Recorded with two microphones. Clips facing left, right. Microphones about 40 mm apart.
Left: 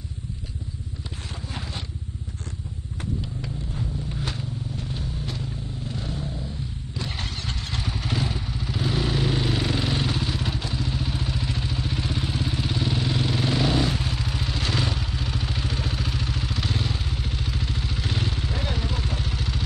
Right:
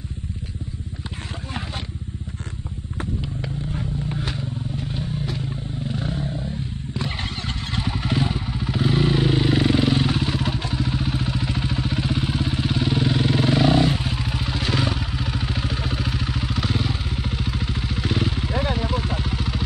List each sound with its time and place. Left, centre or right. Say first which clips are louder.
3.0 s vehicle: right 3 dB; right
5.9 s vehicle: right 6 dB; right
6.9 s motorcycle: right 4 dB; right